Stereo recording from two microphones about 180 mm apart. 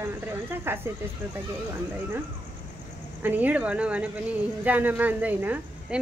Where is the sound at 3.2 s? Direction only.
10° right (ahead or behind).